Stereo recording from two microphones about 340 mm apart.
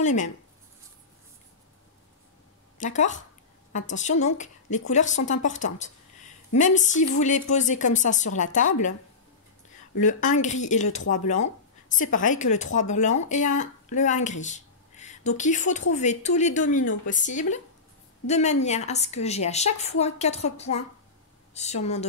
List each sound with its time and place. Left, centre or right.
0.0 s a woman's voice: left
2.8 s a woman's voice: left
9.9 s a woman's voice: left